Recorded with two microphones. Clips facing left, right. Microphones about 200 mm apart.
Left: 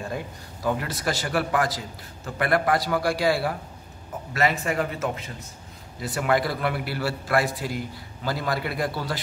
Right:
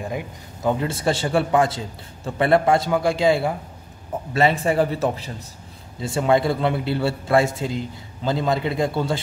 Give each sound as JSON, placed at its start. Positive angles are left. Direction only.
{"t": 0.0, "sound": "a man's voice", "side_deg": -20}